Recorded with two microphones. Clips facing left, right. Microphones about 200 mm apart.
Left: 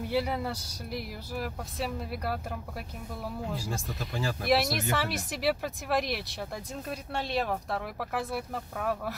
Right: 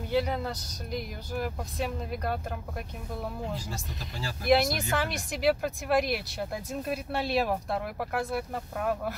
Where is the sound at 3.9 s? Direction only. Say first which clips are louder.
Left 7 dB; 50° left (ahead or behind).